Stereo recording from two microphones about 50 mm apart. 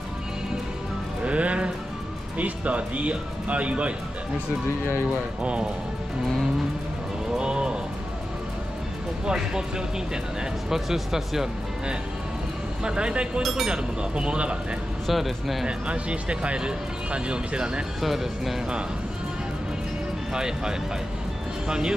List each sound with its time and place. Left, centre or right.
1.2 s music: right
2.3 s speech: right
5.4 s speech: right
7.3 s music: centre
9.2 s speech: centre
10.7 s speech: centre
12.8 s speech: centre
13.4 s speech: centre
14.1 s speech: right
15.0 s speech: centre
15.6 s speech: right
18.0 s speech: centre
20.3 s speech: centre